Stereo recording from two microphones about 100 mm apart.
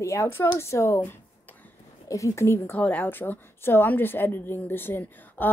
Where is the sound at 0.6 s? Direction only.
30° left (ahead or behind).